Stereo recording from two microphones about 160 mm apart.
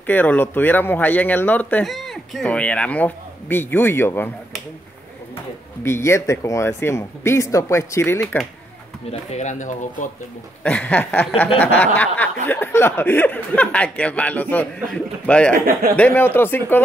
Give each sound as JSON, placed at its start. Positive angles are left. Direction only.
{"t": 0.0, "sound": "speech", "side_deg": 10}
{"t": 5.9, "sound": "speech", "side_deg": 15}
{"t": 9.3, "sound": "speech", "side_deg": 45}
{"t": 10.6, "sound": "speech", "side_deg": 10}
{"t": 15.5, "sound": "speech", "side_deg": -65}
{"t": 16.0, "sound": "speech", "side_deg": 10}